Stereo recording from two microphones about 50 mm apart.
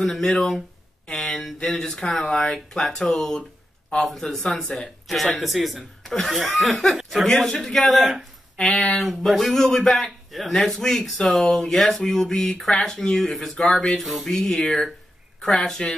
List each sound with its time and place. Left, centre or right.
0.0 s speech: centre
1.0 s a sound: left
1.4 s speech: centre
9.0 s speech: centre
14.2 s speech: centre